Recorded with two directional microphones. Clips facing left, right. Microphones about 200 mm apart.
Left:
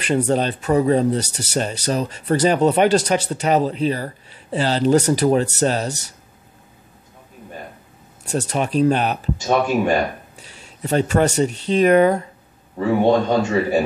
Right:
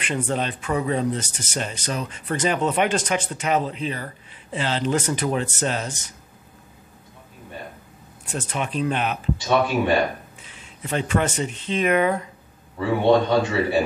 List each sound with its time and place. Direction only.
0.0 s speech: 40° left (ahead or behind)
8.3 s a man's voice: 40° left (ahead or behind)